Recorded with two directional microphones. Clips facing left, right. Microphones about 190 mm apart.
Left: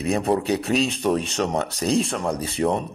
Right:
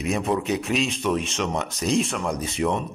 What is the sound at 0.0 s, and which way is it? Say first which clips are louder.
Speech: left 3 dB; 35° left (ahead or behind).